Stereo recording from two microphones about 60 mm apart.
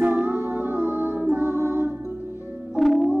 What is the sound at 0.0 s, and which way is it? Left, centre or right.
Music, right.